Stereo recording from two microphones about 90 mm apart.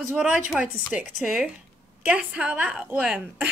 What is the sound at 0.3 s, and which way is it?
Speech, 15° right (ahead or behind).